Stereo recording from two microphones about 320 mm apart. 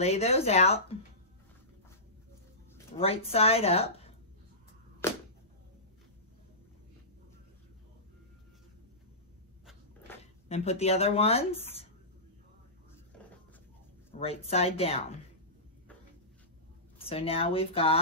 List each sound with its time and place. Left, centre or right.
0.0 s speech: centre
3.0 s speech: centre
10.1 s a sound: centre
10.5 s speech: centre
14.2 s speech: centre
17.0 s speech: centre